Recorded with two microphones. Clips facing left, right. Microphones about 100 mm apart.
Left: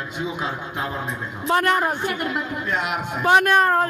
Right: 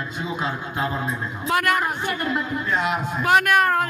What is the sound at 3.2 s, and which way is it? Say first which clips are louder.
Speech: left 2 dB; 25° left (ahead or behind).